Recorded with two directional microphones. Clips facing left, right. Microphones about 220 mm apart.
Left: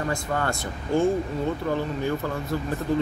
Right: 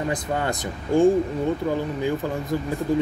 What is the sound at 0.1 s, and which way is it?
Speech, 15° right (ahead or behind).